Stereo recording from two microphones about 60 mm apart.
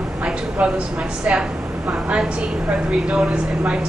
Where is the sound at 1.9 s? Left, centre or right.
Centre.